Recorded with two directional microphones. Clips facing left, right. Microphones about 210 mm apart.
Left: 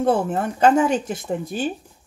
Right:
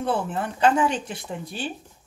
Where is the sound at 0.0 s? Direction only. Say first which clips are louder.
Left 6 dB; 45° left (ahead or behind).